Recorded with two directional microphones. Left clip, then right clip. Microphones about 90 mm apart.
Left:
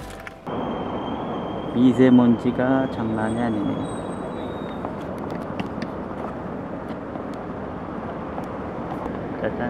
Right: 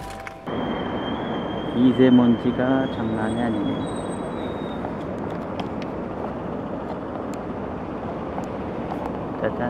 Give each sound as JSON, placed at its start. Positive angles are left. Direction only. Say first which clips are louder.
{"t": 1.8, "sound": "speech", "louder": "left 1 dB", "side_deg": 25}